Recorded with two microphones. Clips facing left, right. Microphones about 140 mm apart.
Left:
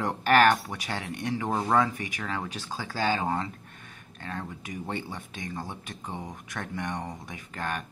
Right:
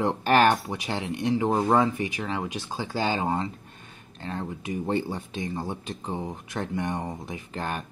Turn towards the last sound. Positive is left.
turn(degrees=-25)  # may be behind; listen again after turning